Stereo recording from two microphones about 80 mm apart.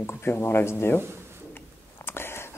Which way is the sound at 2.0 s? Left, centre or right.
Left.